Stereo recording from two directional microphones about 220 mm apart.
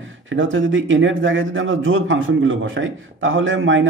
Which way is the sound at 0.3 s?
60° right (ahead or behind).